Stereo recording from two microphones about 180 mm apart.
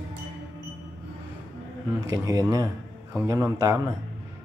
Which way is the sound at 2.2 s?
20° right (ahead or behind).